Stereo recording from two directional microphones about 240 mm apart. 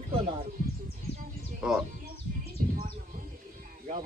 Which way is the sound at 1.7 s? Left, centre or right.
Centre.